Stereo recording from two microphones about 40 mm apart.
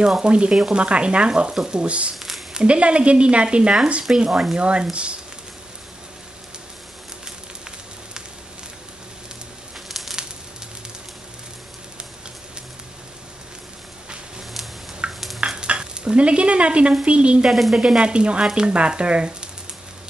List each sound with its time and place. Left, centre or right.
0.2 s speech: right
1.5 s speech: centre
1.8 s speech: right
2.1 s a sound: centre
2.5 s speech: right
4.2 s speech: centre
4.6 s speech: right
9.8 s a sound: centre
15.0 s stir: right
17.0 s speech: right
17.5 s speech: centre
17.7 s speech: right